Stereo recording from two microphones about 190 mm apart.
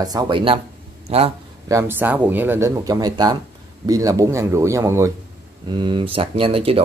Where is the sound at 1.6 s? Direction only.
15° right (ahead or behind).